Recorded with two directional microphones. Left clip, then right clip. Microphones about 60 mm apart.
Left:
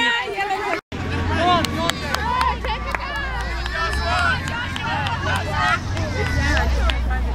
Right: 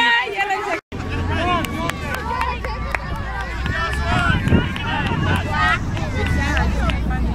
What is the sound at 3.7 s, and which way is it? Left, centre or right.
Vehicle, centre.